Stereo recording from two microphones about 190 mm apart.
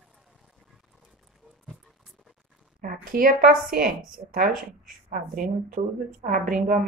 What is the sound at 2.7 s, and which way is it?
Speech, 50° right (ahead or behind).